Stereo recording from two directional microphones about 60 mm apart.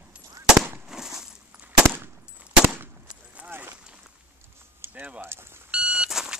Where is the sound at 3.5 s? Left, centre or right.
Right.